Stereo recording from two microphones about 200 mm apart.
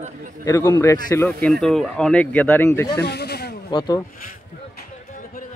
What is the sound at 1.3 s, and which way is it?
Speech, 5° left (ahead or behind).